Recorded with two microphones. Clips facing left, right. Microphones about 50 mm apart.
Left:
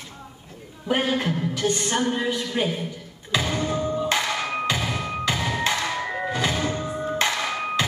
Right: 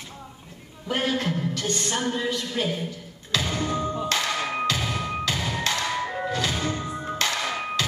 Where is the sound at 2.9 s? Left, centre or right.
Centre.